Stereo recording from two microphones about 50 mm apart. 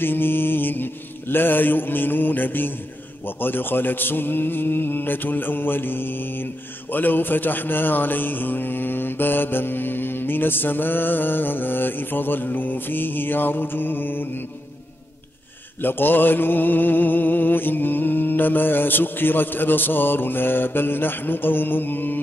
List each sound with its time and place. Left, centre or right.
0.0 s speech: left
15.8 s speech: left